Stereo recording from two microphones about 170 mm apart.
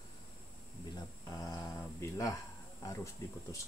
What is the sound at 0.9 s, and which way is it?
Speech, 20° left (ahead or behind).